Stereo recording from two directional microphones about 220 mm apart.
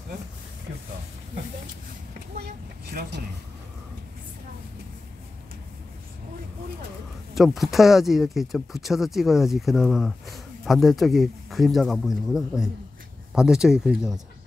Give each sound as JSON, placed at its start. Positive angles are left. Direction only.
{"t": 2.9, "sound": "speech", "side_deg": -40}
{"t": 7.3, "sound": "speech", "side_deg": 0}